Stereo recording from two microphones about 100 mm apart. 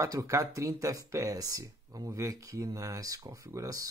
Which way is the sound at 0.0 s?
35° right (ahead or behind).